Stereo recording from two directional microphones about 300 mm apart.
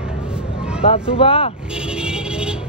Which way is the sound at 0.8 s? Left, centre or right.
Centre.